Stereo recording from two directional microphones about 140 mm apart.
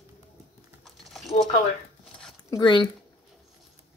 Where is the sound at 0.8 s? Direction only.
Centre (ahead or behind).